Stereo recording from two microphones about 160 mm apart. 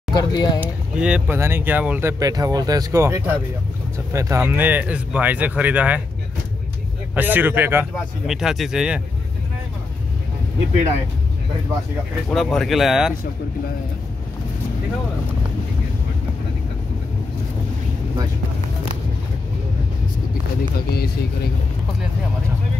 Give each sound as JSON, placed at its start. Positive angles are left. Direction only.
{"t": 0.1, "sound": "speech", "side_deg": 25}
{"t": 0.6, "sound": "speech", "side_deg": -5}
{"t": 7.2, "sound": "speech", "side_deg": -10}
{"t": 8.3, "sound": "speech", "side_deg": 0}
{"t": 12.3, "sound": "speech", "side_deg": 0}